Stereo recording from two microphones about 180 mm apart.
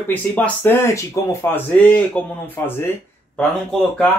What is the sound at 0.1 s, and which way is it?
Speech, 10° left (ahead or behind).